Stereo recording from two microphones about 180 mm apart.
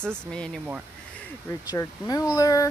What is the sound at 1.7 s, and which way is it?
Speech, 20° left (ahead or behind).